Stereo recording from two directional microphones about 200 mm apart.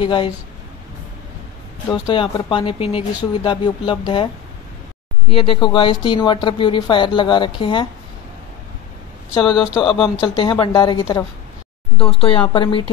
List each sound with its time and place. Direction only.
0.0 s speech: 25° left (ahead or behind)
1.9 s speech: 20° left (ahead or behind)
5.3 s speech: 25° left (ahead or behind)
9.3 s speech: 25° left (ahead or behind)